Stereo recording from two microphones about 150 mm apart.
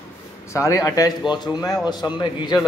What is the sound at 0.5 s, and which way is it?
Speech, 20° left (ahead or behind).